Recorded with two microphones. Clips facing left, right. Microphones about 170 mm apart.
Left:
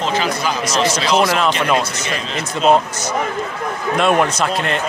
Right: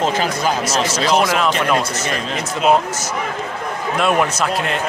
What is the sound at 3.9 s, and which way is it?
Speech, 5° right (ahead or behind).